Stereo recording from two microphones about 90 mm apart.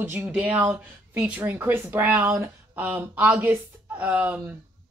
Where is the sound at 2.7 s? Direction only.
20° right (ahead or behind).